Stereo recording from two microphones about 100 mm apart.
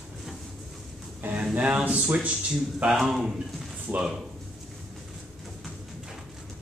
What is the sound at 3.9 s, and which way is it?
Speech, 15° right (ahead or behind).